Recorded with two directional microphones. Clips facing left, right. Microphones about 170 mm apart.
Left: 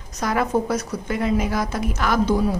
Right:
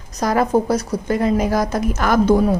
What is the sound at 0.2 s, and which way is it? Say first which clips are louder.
A woman's voice: right 4 dB; 40° right (ahead or behind).